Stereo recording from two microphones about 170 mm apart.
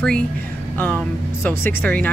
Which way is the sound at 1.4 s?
10° left (ahead or behind).